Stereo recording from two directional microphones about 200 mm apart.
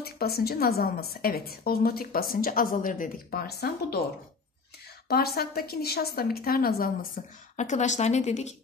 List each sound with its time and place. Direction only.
0.0 s a woman's voice: 50° left (ahead or behind)
5.0 s a woman's voice: 50° left (ahead or behind); by 8.5 s 35° left (ahead or behind)